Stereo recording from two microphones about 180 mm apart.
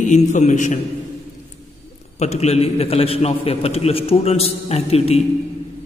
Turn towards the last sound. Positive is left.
turn(degrees=35)  # may be behind; listen again after turning